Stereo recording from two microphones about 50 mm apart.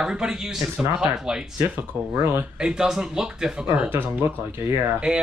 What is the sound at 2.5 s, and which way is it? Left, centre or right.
Speech, centre.